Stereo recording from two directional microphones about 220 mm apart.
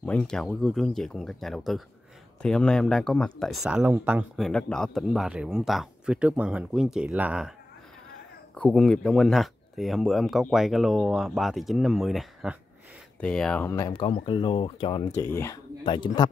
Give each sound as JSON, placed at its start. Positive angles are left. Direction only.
{"t": 0.0, "sound": "speech", "side_deg": 5}
{"t": 8.5, "sound": "speech", "side_deg": 5}